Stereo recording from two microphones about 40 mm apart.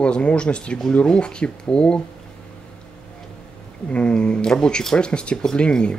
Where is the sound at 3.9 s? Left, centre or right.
Left.